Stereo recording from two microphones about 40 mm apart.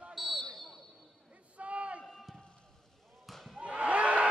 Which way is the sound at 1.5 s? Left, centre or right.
Right.